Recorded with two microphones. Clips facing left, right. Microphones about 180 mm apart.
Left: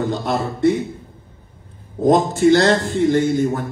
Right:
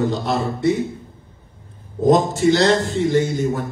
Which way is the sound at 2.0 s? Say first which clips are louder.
Left 1 dB; 55° left (ahead or behind).